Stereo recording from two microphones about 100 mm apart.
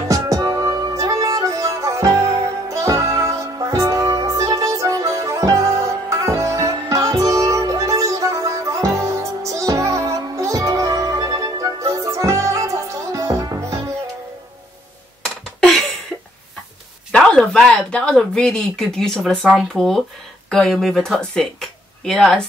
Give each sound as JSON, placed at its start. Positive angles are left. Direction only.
{"t": 0.1, "sound": "music", "side_deg": -35}
{"t": 17.1, "sound": "a sound", "side_deg": 5}
{"t": 19.7, "sound": "speech", "side_deg": 5}